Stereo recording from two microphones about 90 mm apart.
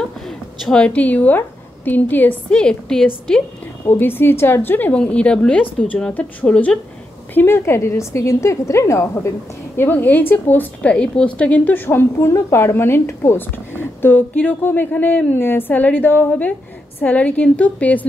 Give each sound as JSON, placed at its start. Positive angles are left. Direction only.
{"t": 0.7, "sound": "a woman's voice", "side_deg": 10}
{"t": 3.8, "sound": "a woman's voice", "side_deg": 25}
{"t": 7.3, "sound": "a woman's voice", "side_deg": 25}